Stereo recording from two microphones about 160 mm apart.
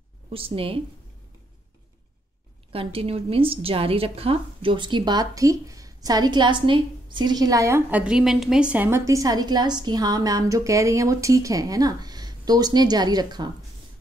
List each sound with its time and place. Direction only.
0.3 s a woman's voice: 35° right (ahead or behind)
2.7 s a woman's voice: 35° right (ahead or behind); by 8.6 s centre (ahead or behind)
8.7 s a woman's voice: 15° right (ahead or behind)